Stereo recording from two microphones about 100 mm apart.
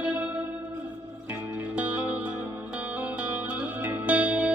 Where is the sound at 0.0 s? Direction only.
10° right (ahead or behind).